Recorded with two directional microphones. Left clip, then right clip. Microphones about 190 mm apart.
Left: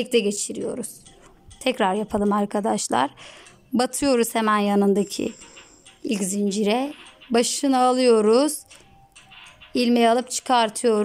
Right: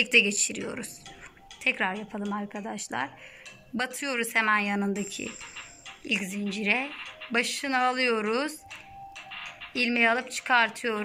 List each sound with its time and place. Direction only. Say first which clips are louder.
0.0 s a woman's voice: even; 35° left (ahead or behind)
1.6 s speech: left 6 dB; 45° left (ahead or behind)
2.7 s a woman's voice: left 8 dB; 55° left (ahead or behind)
9.8 s speech: left 5 dB; 45° left (ahead or behind)